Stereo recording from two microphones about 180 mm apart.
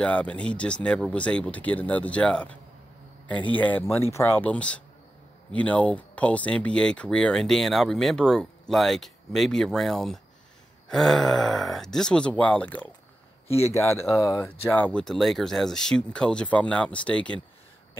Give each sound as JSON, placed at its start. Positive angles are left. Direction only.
{"t": 0.0, "sound": "speech", "side_deg": 5}
{"t": 13.7, "sound": "speech", "side_deg": 15}